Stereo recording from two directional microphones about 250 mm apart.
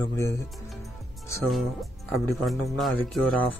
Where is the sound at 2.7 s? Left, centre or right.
Centre.